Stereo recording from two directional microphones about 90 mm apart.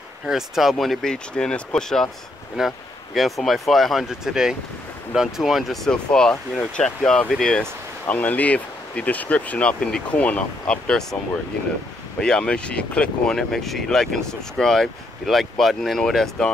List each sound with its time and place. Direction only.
0.3 s speech: 5° right (ahead or behind)
2.6 s speech: 5° right (ahead or behind)
12.2 s speech: 10° left (ahead or behind)